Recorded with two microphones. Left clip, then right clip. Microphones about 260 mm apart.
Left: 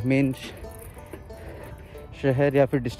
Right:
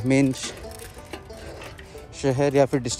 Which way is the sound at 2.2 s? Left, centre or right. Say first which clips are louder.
Right 1 dB; centre.